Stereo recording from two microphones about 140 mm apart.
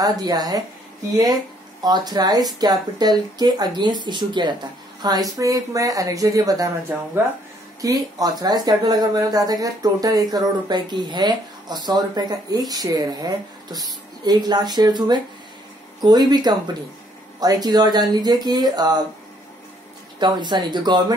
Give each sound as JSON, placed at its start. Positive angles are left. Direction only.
{"t": 0.0, "sound": "speech", "side_deg": -30}
{"t": 6.9, "sound": "speech", "side_deg": -15}
{"t": 7.8, "sound": "speech", "side_deg": -25}
{"t": 20.2, "sound": "speech", "side_deg": -30}